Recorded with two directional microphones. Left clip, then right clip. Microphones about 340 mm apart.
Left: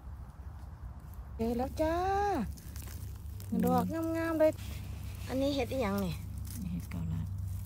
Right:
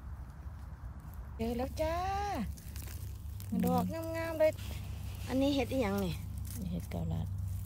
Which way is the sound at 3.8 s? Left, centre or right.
Centre.